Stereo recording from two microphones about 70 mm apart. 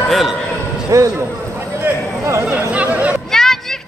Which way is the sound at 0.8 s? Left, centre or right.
Right.